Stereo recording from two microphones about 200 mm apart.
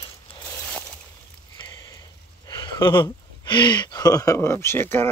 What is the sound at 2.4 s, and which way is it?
Speech, 25° left (ahead or behind).